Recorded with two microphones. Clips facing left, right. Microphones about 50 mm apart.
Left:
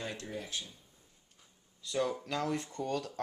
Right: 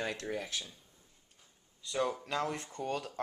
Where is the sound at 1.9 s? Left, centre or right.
Centre.